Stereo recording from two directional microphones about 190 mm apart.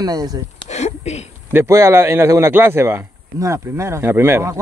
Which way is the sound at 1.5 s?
15° right (ahead or behind).